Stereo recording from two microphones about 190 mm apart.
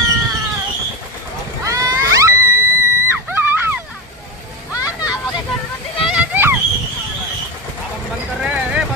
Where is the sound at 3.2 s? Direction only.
10° right (ahead or behind).